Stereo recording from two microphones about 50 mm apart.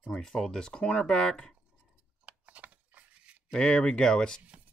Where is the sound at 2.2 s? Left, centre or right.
Right.